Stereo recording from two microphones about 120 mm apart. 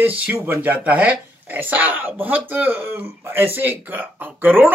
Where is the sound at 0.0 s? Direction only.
15° right (ahead or behind).